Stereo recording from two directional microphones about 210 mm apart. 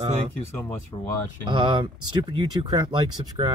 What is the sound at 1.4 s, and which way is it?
Speech, 25° right (ahead or behind).